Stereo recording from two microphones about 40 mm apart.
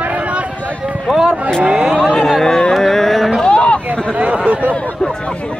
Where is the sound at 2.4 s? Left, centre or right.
Centre.